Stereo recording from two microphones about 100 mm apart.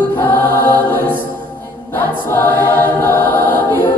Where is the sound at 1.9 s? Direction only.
20° left (ahead or behind).